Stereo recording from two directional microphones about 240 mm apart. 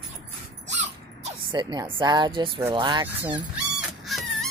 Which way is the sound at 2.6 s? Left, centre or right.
Centre.